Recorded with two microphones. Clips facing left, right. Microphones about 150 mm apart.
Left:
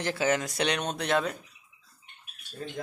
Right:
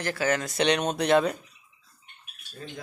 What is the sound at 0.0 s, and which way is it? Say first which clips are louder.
Speech: even; 20° left (ahead or behind).